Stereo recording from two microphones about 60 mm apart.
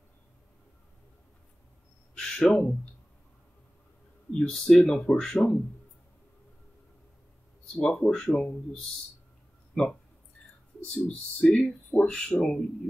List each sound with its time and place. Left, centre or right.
2.1 s speech: centre
4.3 s speech: centre
7.7 s speech: centre
9.8 s speech: centre
11.1 s speech: centre